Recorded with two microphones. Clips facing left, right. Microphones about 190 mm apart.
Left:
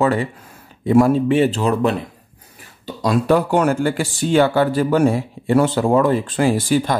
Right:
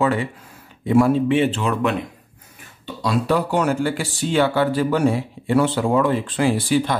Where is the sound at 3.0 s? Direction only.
50° left (ahead or behind).